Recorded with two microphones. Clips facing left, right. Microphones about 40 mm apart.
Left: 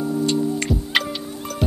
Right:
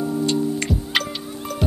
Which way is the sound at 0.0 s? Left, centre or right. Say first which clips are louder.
Even; centre.